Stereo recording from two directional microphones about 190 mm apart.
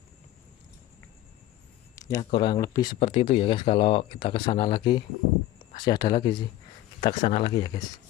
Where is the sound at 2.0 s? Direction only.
15° left (ahead or behind); by 7.5 s 30° left (ahead or behind).